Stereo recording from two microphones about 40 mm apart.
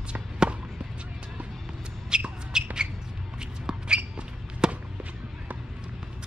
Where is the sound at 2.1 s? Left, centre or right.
Right.